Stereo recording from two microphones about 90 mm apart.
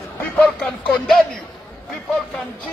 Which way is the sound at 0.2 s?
15° left (ahead or behind).